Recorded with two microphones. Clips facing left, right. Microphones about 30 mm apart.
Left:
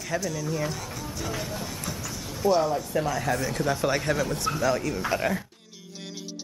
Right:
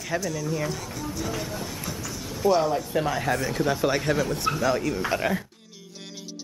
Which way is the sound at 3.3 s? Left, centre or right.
Centre.